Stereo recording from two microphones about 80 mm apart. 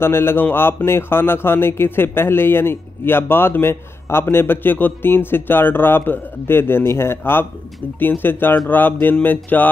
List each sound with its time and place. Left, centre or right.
0.0 s speech: left